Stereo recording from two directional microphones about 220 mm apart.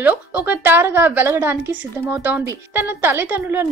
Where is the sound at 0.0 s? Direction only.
5° right (ahead or behind).